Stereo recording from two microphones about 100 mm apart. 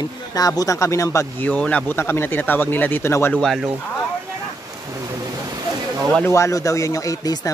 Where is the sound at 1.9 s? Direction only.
25° left (ahead or behind).